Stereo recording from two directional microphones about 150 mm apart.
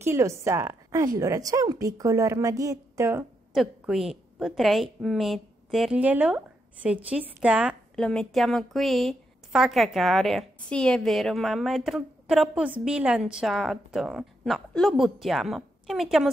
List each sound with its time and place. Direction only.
0.0 s a woman's voice: 20° right (ahead or behind)
3.5 s a woman's voice: 5° right (ahead or behind)
7.9 s a woman's voice: 5° left (ahead or behind)